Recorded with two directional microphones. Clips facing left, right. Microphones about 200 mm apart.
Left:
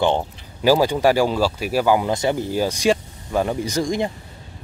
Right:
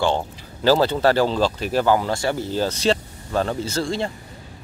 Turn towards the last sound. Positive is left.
turn(degrees=15)  # may be behind; listen again after turning